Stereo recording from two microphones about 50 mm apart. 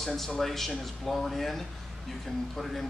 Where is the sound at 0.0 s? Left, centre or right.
Centre.